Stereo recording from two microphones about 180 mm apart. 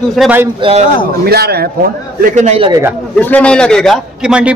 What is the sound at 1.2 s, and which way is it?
Speech, 60° right (ahead or behind).